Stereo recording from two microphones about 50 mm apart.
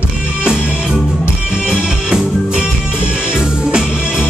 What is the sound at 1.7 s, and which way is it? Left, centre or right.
Music, centre.